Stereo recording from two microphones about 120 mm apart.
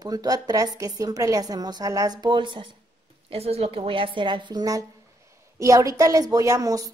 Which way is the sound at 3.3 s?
55° right (ahead or behind).